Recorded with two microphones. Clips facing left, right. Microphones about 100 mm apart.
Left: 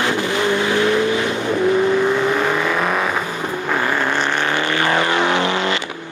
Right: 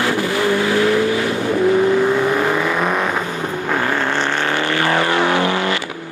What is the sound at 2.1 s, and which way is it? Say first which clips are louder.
Vehicle: right 1 dB; 15° right (ahead or behind).